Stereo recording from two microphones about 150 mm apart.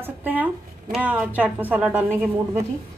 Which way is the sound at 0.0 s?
10° right (ahead or behind).